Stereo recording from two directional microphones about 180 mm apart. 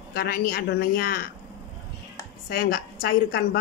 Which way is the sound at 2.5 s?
55° left (ahead or behind).